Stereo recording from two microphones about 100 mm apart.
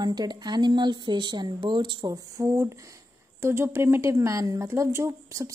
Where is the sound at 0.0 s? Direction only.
45° right (ahead or behind).